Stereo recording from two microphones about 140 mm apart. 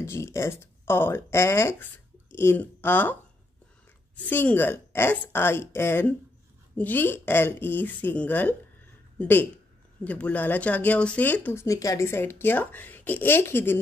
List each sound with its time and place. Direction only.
0.0 s speech: 20° left (ahead or behind)
4.2 s speech: 10° left (ahead or behind)